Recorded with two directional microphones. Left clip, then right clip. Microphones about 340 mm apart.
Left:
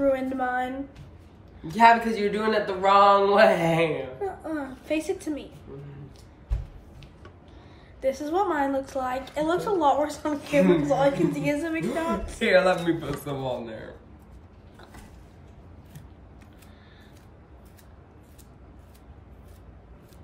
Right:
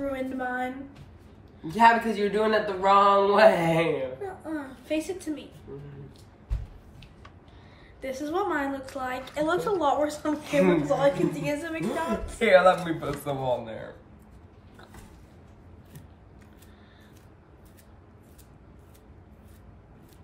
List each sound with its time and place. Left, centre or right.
0.0 s a woman's voice: centre
1.7 s a woman's voice: centre
4.5 s a woman's voice: centre
8.0 s a woman's voice: centre
10.4 s speech: centre
11.0 s a woman's voice: centre
12.4 s speech: centre